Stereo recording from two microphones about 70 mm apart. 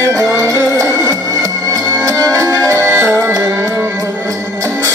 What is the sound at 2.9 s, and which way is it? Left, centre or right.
Music, right.